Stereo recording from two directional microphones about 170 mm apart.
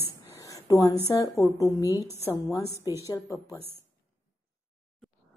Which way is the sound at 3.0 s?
20° left (ahead or behind).